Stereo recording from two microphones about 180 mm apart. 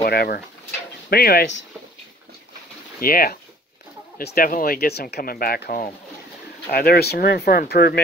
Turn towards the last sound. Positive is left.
turn(degrees=60)  # may be behind; listen again after turning